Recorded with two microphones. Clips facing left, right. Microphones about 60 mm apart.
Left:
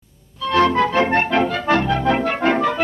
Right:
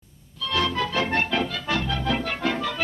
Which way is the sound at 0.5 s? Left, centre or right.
Left.